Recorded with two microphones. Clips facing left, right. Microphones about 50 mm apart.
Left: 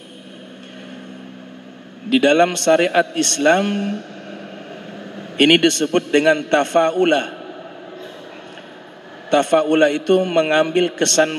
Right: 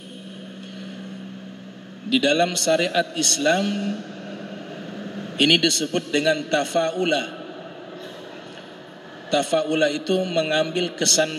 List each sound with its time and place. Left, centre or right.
2.0 s a man's voice: left
4.9 s air conditioning: centre
5.4 s a man's voice: left
9.3 s a man's voice: left